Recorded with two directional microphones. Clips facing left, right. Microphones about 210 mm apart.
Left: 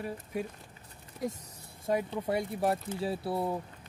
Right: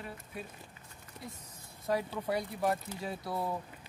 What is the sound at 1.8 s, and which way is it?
Speech, 25° left (ahead or behind).